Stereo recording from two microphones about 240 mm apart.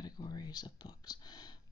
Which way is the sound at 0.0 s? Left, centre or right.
Centre.